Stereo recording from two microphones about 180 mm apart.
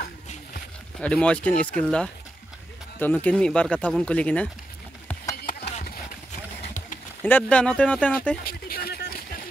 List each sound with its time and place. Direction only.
1.0 s speech: 5° left (ahead or behind)
7.2 s speech: 10° left (ahead or behind)
8.5 s a sound: 55° left (ahead or behind)